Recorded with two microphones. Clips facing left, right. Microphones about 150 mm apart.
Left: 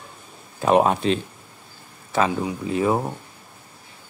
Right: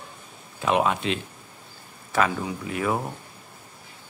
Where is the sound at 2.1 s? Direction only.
25° left (ahead or behind).